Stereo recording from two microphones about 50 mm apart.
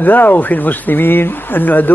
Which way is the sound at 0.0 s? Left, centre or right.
Left.